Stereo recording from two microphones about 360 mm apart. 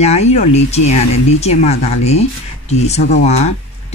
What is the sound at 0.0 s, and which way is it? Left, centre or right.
Speech, centre.